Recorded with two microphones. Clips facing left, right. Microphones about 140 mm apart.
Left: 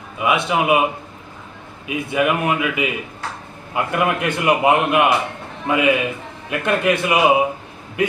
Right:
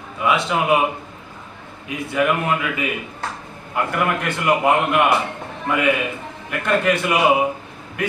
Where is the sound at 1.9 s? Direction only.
15° left (ahead or behind).